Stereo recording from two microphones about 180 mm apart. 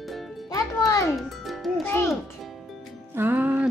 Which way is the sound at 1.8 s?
10° left (ahead or behind).